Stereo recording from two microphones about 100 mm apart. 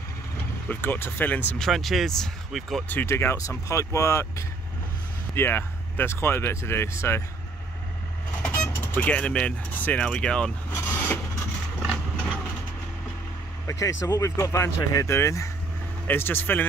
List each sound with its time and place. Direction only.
0.7 s speech: 20° left (ahead or behind)
1.6 s speech: centre (ahead or behind)
2.9 s speech: 20° left (ahead or behind)
8.5 s speech: 20° left (ahead or behind)
10.7 s vehicle: 25° left (ahead or behind)
13.7 s speech: 30° left (ahead or behind)